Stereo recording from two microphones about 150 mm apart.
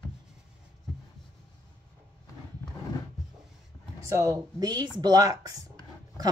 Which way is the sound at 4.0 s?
20° right (ahead or behind).